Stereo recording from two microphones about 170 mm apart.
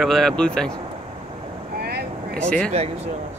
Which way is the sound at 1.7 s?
65° right (ahead or behind).